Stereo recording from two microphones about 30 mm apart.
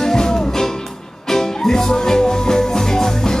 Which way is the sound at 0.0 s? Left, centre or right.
Centre.